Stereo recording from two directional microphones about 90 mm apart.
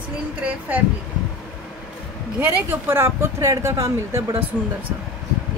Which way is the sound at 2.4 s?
25° right (ahead or behind).